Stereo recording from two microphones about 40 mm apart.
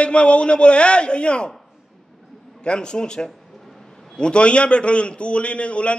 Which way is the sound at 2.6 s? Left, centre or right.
Left.